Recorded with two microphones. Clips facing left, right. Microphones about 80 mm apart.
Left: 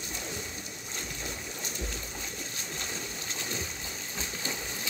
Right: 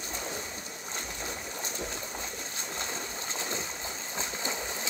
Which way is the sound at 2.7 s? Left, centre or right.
Right.